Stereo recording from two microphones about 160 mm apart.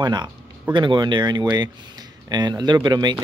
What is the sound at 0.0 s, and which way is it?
Speech, 25° right (ahead or behind).